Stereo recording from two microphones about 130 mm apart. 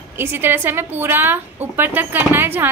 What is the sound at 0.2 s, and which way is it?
A woman's voice, 15° right (ahead or behind).